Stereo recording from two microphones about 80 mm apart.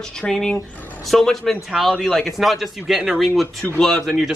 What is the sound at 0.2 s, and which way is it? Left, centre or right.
A man's voice, centre.